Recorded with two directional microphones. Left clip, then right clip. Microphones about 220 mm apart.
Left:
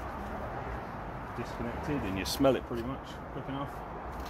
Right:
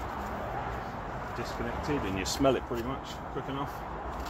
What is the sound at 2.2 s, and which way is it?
Speech, 25° left (ahead or behind).